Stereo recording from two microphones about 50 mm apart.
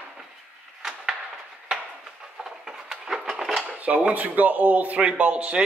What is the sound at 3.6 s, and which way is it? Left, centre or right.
Dishes, right.